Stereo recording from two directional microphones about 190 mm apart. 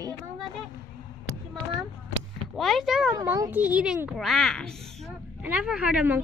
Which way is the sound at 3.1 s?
15° right (ahead or behind).